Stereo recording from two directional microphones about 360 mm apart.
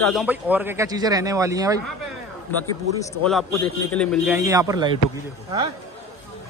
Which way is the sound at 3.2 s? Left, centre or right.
Centre.